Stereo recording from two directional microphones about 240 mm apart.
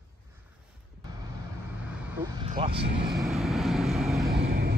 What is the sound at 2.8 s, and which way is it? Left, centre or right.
Speech, right.